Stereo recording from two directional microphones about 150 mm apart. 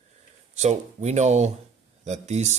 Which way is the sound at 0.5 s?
50° right (ahead or behind).